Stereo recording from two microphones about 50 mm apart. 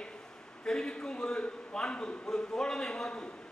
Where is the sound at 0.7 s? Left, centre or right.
Centre.